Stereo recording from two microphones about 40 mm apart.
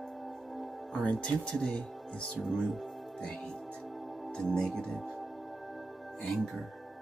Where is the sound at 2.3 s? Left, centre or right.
Centre.